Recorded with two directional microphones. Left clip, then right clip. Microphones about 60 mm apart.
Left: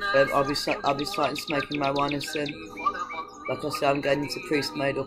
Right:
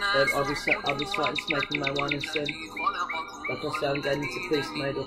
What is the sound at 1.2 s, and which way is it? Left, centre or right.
Bird, right.